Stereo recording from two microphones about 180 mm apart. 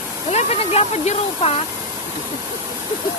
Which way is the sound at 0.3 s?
35° left (ahead or behind).